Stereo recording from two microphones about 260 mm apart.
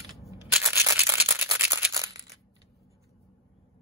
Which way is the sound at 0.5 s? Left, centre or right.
Centre.